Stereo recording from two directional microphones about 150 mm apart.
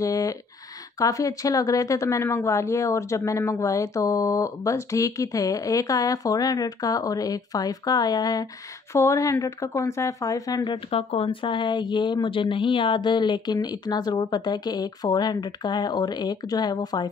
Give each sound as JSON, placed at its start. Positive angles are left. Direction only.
{"t": 0.0, "sound": "speech", "side_deg": 20}